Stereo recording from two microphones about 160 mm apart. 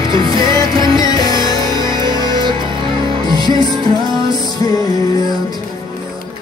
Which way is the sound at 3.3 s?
30° right (ahead or behind).